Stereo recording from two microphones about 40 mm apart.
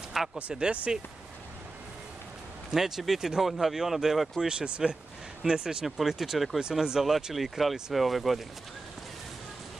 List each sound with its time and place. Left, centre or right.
0.2 s speech: centre
0.6 s speech: right
2.7 s speech: centre
4.5 s speech: right
5.9 s speech: centre